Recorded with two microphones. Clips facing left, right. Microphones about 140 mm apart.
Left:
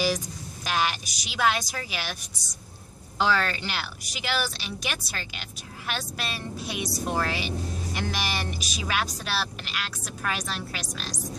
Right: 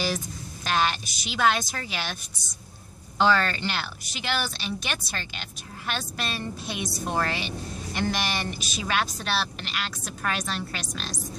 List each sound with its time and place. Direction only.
0.7 s speech: 5° left (ahead or behind)
3.2 s speech: 5° left (ahead or behind)